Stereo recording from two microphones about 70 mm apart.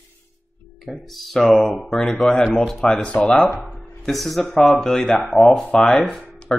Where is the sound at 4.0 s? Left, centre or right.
Centre.